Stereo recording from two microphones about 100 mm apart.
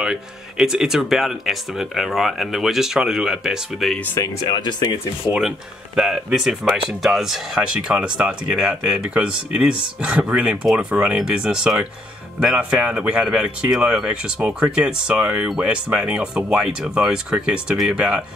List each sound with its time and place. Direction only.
0.0 s speech: 5° right (ahead or behind)
4.2 s speech: 30° left (ahead or behind)
4.5 s speech: 45° left (ahead or behind)
5.2 s speech: 5° right (ahead or behind)